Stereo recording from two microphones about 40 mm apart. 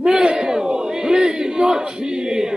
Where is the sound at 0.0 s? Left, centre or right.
Centre.